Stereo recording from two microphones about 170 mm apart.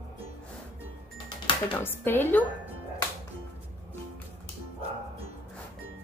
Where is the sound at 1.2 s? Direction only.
30° left (ahead or behind).